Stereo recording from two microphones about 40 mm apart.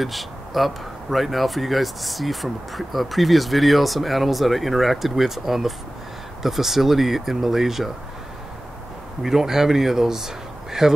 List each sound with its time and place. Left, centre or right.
0.0 s speech: centre
9.2 s speech: centre